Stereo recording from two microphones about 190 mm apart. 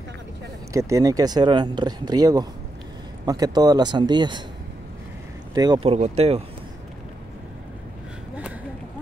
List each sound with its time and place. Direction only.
0.7 s speech: 15° right (ahead or behind)
5.5 s speech: 20° right (ahead or behind)
5.8 s speech: 35° right (ahead or behind)